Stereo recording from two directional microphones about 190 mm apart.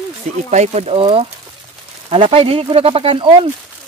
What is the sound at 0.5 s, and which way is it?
Speech, 35° right (ahead or behind).